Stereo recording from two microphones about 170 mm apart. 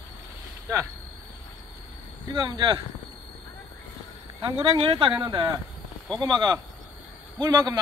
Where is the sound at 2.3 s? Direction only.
25° right (ahead or behind).